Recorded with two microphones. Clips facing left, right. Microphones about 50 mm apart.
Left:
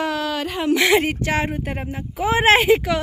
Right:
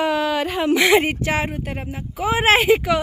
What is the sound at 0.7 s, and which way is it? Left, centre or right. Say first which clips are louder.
Speech: right 2 dB; centre.